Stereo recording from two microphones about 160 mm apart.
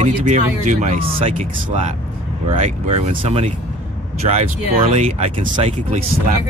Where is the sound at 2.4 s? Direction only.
45° right (ahead or behind).